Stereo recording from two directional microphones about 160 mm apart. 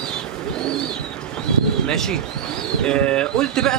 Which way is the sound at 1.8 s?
5° left (ahead or behind).